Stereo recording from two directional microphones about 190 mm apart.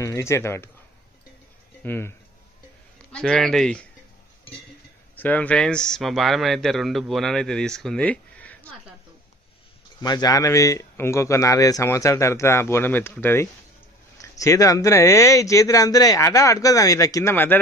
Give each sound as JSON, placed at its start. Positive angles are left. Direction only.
{"t": 0.0, "sound": "a man's voice", "side_deg": 15}
{"t": 1.8, "sound": "a man's voice", "side_deg": 10}
{"t": 5.1, "sound": "speech", "side_deg": 10}
{"t": 10.0, "sound": "a man's voice", "side_deg": 20}